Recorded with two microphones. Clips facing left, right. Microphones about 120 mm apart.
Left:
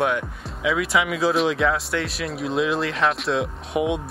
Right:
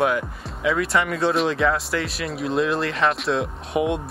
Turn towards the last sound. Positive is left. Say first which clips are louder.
# right 1 dB
turn(degrees=0)  # may be behind; listen again after turning